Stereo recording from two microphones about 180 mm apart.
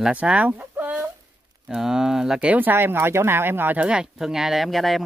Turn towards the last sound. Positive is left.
turn(degrees=0)  # may be behind; listen again after turning